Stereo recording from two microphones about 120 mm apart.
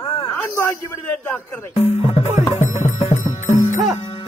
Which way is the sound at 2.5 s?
70° left (ahead or behind).